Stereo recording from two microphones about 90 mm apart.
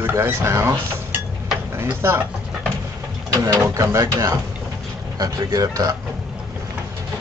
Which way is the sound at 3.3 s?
35° right (ahead or behind).